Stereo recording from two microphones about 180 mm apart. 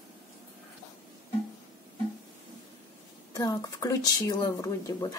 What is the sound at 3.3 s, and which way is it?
Speech, 20° left (ahead or behind).